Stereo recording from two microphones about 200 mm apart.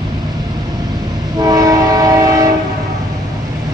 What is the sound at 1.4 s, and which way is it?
Train, 20° right (ahead or behind).